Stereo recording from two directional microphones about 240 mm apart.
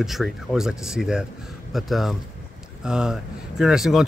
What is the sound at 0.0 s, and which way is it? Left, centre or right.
Speech, centre.